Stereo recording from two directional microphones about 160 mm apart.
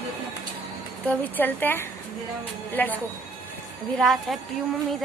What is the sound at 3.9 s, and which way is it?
Speech, centre (ahead or behind).